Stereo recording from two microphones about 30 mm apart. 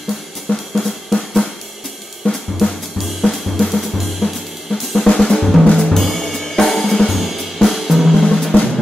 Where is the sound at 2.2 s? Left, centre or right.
Left.